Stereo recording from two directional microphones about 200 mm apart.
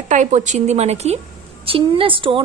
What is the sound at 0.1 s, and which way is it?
A woman's voice, 35° right (ahead or behind).